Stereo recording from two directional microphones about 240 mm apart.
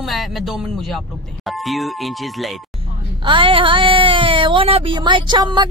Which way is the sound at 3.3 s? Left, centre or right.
Right.